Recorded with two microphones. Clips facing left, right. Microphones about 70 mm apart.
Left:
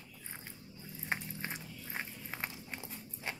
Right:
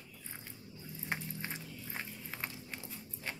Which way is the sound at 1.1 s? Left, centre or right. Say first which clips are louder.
Left 1 dB; centre.